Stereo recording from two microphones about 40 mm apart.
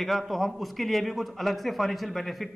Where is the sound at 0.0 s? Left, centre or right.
Centre.